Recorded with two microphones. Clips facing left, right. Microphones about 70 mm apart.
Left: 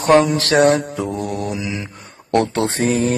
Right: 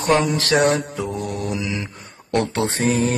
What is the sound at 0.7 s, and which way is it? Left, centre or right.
Mantra, left.